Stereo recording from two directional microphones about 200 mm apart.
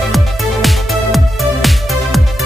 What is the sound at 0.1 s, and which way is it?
Music, centre (ahead or behind).